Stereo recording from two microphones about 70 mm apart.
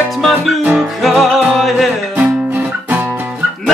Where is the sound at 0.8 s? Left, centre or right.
Centre.